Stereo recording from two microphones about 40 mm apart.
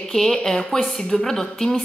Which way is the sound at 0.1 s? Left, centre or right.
Centre.